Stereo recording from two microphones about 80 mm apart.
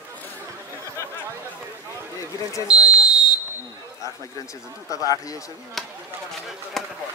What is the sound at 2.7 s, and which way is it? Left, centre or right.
Smoke detector, centre.